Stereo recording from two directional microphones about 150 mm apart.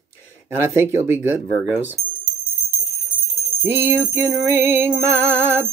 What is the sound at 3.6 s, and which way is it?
Music, 15° right (ahead or behind).